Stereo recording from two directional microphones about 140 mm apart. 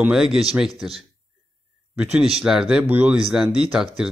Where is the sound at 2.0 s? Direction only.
5° right (ahead or behind).